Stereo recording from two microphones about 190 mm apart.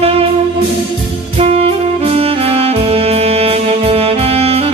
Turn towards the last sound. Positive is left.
turn(degrees=-30)  # may be behind; listen again after turning